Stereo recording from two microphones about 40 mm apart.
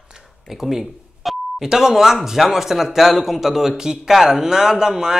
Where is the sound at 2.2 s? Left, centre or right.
Centre.